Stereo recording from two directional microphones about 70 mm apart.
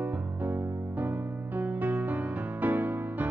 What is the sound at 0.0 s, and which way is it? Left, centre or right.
Music, right.